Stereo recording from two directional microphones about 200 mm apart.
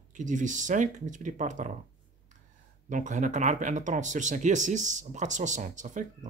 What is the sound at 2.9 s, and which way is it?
Speech, 40° right (ahead or behind).